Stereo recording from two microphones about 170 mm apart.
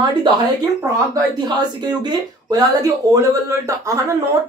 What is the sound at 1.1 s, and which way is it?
Speech, 25° right (ahead or behind).